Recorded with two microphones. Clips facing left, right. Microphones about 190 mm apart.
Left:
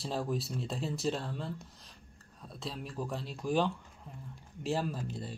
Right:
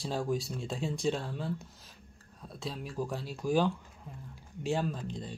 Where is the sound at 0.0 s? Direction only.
Centre (ahead or behind).